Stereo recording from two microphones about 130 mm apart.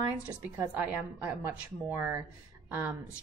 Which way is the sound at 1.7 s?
20° right (ahead or behind).